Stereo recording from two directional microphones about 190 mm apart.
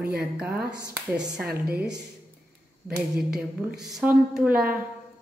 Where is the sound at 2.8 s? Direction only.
50° right (ahead or behind).